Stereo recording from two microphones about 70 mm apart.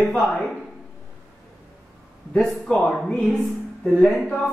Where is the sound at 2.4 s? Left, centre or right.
Centre.